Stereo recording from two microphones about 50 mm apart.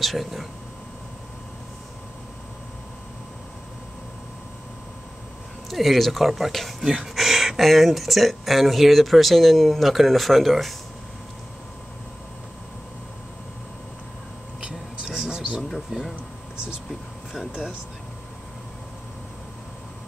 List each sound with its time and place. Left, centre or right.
0.0 s speech: centre
5.7 s speech: centre
15.0 s a sound: centre
15.9 s speech: centre
17.5 s speech: right